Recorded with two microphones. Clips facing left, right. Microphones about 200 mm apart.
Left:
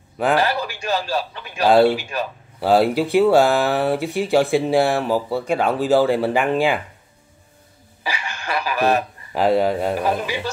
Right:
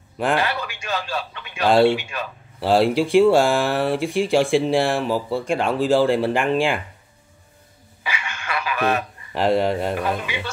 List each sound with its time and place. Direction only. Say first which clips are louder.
0.4 s speech: left 4 dB; 40° left (ahead or behind)
1.7 s speech: left 1 dB; 5° left (ahead or behind)
2.0 s a man's voice: left 4 dB; 40° left (ahead or behind)
2.6 s speech: left 1 dB; 5° left (ahead or behind)
8.0 s a sound: left 2 dB; 35° left (ahead or behind)
9.3 s speech: left 2 dB; 5° left (ahead or behind)
10.2 s a man's voice: left 4 dB; 40° left (ahead or behind)